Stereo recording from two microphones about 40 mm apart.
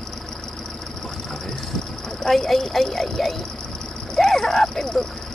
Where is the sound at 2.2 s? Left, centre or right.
Centre.